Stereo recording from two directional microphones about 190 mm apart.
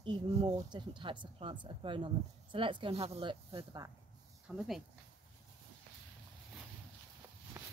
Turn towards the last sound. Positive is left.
turn(degrees=-10)  # may be behind; listen again after turning